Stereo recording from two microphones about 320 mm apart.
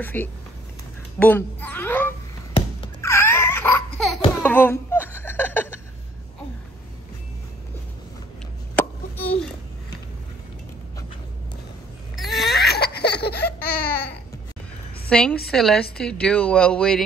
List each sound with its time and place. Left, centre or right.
0.0 s a child's voice: centre
2.5 s babbling: centre
4.4 s laughter: centre
8.7 s a sound: centre
12.2 s a sound: centre
12.4 s laughter: left
15.0 s a woman's voice: centre